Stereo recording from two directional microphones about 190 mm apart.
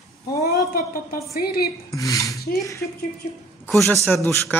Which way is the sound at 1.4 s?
55° left (ahead or behind).